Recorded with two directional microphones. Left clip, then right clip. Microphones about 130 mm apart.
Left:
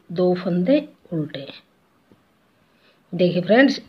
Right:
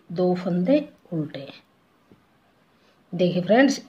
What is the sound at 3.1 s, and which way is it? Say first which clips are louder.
Speech: left 3 dB; 25° left (ahead or behind).